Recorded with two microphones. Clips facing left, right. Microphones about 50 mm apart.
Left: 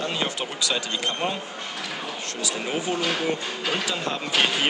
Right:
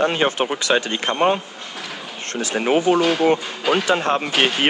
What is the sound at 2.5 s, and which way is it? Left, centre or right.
Speech, right.